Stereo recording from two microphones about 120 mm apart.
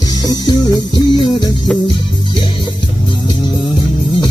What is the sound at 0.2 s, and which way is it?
Music, 30° left (ahead or behind).